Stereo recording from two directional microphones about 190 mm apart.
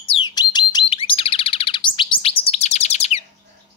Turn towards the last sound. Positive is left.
turn(degrees=35)  # may be behind; listen again after turning